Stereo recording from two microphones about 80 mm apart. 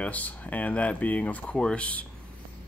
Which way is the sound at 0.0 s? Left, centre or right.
Centre.